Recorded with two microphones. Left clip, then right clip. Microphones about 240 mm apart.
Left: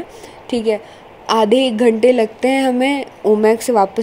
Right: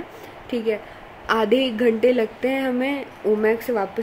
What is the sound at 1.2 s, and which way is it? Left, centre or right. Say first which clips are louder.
A woman's voice: left 6 dB; centre.